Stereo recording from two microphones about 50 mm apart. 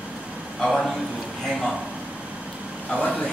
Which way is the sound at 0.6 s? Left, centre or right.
Centre.